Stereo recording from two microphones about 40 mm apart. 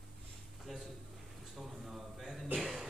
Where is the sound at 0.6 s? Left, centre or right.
Centre.